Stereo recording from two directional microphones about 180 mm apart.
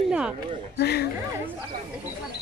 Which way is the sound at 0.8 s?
60° left (ahead or behind).